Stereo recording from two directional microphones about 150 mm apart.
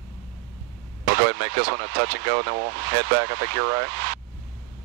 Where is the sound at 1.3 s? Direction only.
10° left (ahead or behind).